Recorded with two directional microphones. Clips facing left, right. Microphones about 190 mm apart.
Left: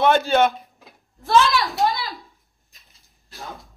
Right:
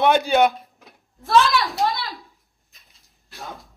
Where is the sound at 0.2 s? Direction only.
15° right (ahead or behind).